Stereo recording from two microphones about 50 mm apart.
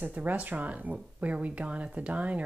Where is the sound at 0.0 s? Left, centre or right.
Right.